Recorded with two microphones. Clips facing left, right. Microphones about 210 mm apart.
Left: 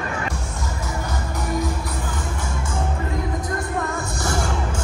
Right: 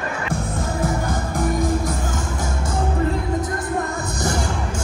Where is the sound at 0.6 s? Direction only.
50° right (ahead or behind).